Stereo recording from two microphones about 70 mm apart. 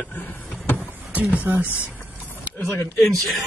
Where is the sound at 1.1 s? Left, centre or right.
Right.